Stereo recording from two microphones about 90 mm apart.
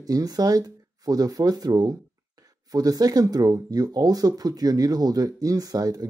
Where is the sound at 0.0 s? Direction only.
45° right (ahead or behind).